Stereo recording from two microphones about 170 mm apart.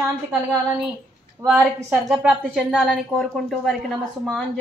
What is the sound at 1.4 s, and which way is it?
A woman's voice, 5° right (ahead or behind).